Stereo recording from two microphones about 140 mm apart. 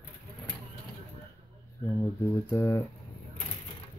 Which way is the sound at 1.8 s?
20° left (ahead or behind).